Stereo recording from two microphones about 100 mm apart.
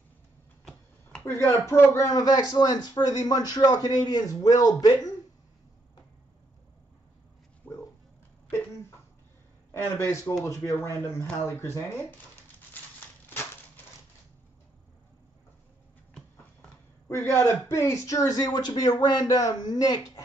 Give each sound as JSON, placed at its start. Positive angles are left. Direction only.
{"t": 1.4, "sound": "a man's voice", "side_deg": 25}
{"t": 7.7, "sound": "dog", "side_deg": 15}
{"t": 9.9, "sound": "a man's voice", "side_deg": 25}
{"t": 17.1, "sound": "a man's voice", "side_deg": 25}